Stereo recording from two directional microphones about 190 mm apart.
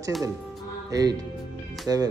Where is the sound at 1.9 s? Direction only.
20° right (ahead or behind).